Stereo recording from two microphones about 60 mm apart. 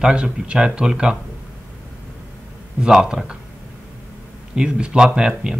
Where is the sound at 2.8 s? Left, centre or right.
Centre.